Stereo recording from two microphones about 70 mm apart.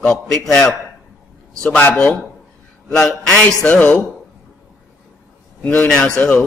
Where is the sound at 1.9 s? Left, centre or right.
Centre.